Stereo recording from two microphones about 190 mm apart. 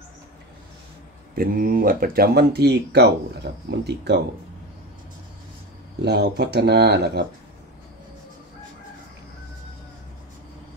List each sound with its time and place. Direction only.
1.3 s speech: 50° right (ahead or behind)
5.9 s speech: 60° right (ahead or behind)